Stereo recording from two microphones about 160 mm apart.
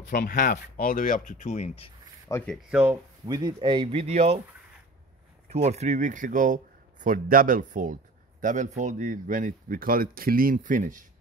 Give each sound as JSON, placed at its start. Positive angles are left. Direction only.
{"t": 0.0, "sound": "speech", "side_deg": 70}
{"t": 2.3, "sound": "speech", "side_deg": 20}
{"t": 2.7, "sound": "speech", "side_deg": -10}
{"t": 3.3, "sound": "speech", "side_deg": -25}
{"t": 5.5, "sound": "speech", "side_deg": -45}